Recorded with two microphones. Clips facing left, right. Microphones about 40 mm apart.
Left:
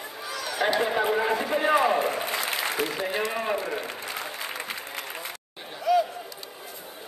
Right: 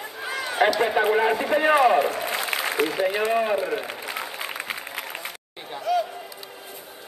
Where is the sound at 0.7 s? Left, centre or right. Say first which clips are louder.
Right 4 dB; centre.